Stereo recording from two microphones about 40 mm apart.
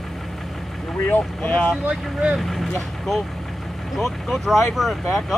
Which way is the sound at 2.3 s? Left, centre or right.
Centre.